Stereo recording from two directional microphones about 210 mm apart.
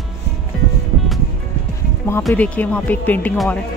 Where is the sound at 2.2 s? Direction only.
5° left (ahead or behind).